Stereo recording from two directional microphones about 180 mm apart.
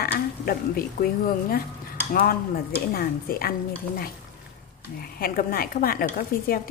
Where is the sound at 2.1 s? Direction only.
50° left (ahead or behind).